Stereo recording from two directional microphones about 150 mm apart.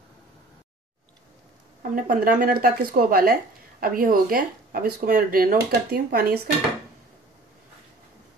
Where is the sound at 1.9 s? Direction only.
65° right (ahead or behind); by 6.5 s 90° right.